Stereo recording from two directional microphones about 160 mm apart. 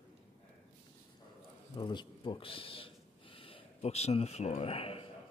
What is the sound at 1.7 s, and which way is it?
Speech, 30° left (ahead or behind).